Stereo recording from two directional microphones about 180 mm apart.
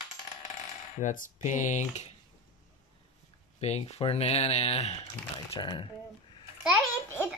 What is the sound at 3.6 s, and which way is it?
Speech, 35° left (ahead or behind).